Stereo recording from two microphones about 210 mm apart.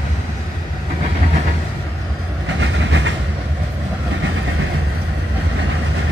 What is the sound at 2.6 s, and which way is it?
Train, 60° right (ahead or behind).